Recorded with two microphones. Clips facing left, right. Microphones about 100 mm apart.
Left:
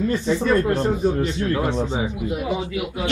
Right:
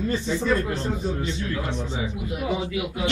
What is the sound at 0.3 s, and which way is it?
Speech, 60° left (ahead or behind).